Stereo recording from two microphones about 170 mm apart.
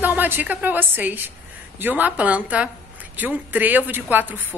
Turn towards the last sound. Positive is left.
turn(degrees=-10)  # may be behind; listen again after turning